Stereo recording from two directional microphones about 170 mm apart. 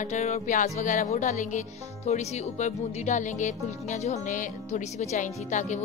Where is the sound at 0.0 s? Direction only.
40° left (ahead or behind).